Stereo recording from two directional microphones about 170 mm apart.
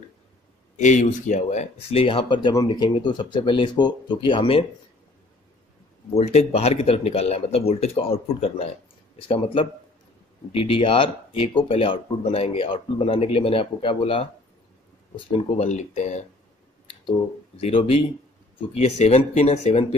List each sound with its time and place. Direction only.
0.7 s speech: 45° left (ahead or behind); by 4.6 s 30° left (ahead or behind)
6.1 s speech: 40° left (ahead or behind)
15.3 s speech: 40° left (ahead or behind)
17.6 s speech: 35° left (ahead or behind)